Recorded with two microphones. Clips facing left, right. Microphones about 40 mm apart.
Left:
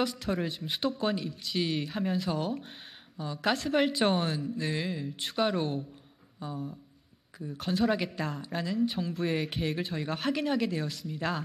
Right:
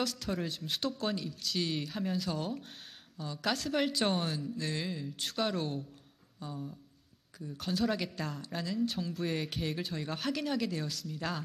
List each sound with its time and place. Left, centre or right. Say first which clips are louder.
0.0 s a woman's voice: left 4 dB; centre